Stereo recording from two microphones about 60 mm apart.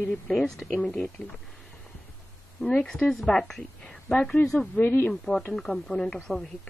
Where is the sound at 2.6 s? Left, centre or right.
Centre.